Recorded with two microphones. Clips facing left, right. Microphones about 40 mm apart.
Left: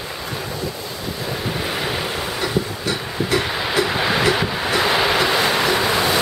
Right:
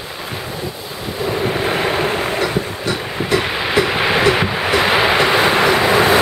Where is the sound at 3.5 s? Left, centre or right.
Right.